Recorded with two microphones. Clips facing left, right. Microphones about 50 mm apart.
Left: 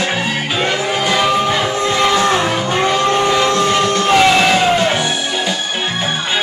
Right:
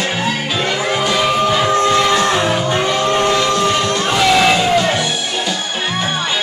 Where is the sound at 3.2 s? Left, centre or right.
Centre.